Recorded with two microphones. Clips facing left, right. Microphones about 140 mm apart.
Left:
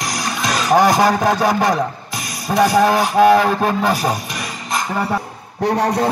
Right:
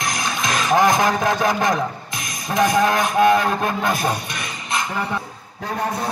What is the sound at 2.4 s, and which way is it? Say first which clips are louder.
Speech: left 4 dB; 35° left (ahead or behind).